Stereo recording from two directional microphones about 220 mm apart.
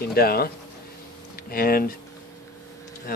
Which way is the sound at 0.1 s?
45° left (ahead or behind).